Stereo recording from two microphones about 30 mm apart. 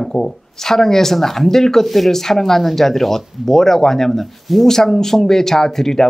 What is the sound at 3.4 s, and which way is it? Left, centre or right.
Speech, centre.